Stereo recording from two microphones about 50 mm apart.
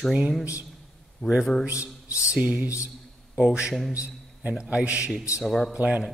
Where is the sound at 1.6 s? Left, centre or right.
Right.